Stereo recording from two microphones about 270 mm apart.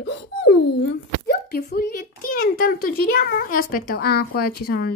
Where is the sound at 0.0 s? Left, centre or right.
Left.